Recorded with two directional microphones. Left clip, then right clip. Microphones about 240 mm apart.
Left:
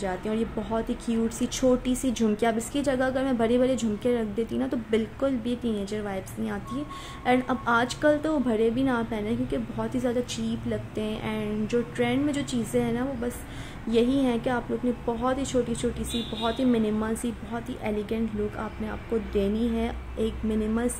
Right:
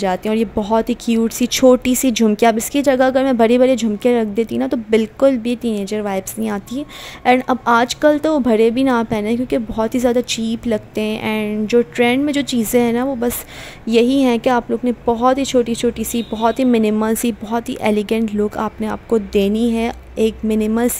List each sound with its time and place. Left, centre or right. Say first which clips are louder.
0.0 s speech: right 11 dB; right